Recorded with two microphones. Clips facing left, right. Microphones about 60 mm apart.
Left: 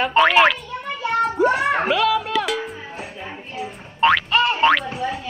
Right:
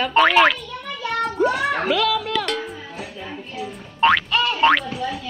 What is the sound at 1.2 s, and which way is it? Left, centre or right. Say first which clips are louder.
Speech: left 2 dB; left.